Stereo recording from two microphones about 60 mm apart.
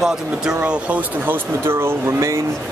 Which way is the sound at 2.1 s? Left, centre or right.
Right.